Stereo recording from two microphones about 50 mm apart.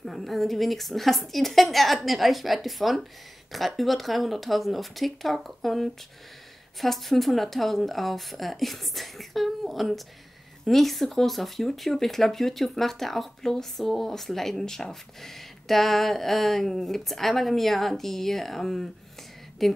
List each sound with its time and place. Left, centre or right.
0.0 s speech: centre